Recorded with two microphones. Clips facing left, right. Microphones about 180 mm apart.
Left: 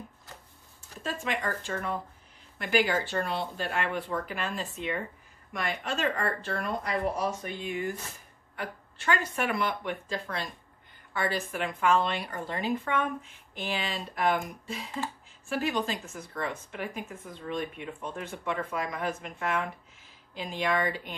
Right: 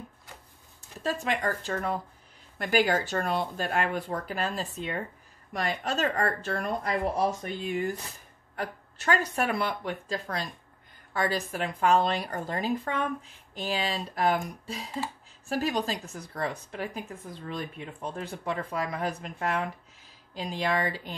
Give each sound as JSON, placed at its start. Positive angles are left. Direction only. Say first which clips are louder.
{"t": 0.7, "sound": "a woman's voice", "louder": "right 4 dB", "side_deg": -40}
{"t": 15.4, "sound": "a woman's voice", "louder": "right 1 dB", "side_deg": -40}